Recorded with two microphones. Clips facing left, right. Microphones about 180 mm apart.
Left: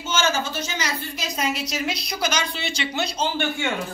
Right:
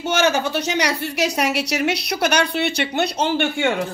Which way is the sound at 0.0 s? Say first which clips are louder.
Right 5 dB; 65° right (ahead or behind).